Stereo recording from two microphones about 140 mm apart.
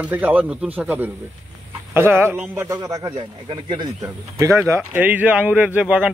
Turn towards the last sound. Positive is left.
turn(degrees=-10)  # may be behind; listen again after turning